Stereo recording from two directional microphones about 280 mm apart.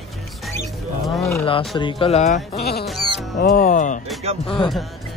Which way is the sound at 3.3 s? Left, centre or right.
Left.